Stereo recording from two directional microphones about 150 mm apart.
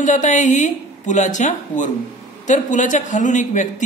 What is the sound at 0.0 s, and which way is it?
A man's voice, 55° left (ahead or behind).